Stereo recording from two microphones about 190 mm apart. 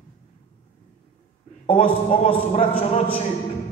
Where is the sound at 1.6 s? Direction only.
30° left (ahead or behind).